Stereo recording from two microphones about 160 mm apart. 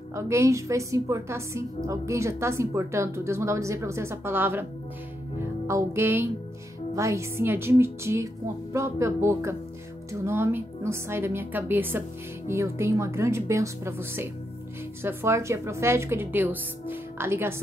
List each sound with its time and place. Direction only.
0.1 s a woman's voice: 20° right (ahead or behind)
5.4 s music: 15° right (ahead or behind)
7.0 s a woman's voice: 20° right (ahead or behind)